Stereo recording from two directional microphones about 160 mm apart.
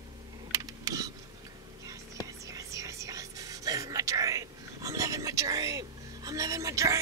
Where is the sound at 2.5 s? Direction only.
20° right (ahead or behind).